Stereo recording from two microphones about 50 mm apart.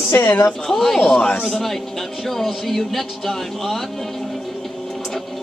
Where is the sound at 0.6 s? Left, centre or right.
Centre.